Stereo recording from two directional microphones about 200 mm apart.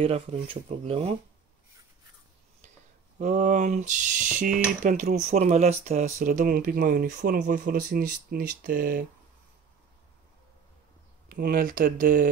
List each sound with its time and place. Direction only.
0.0 s speech: 30° right (ahead or behind)
3.2 s speech: 40° right (ahead or behind)
11.2 s speech: 45° right (ahead or behind)